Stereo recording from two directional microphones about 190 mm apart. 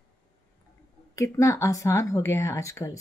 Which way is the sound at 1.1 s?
15° left (ahead or behind).